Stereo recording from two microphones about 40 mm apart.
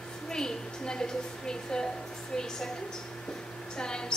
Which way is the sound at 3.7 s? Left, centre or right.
Centre.